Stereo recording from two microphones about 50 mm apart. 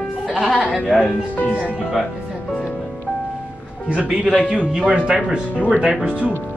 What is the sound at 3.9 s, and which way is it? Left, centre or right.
Speech, right.